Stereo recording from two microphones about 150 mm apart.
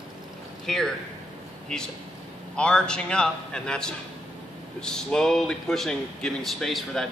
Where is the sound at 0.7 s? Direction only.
5° left (ahead or behind).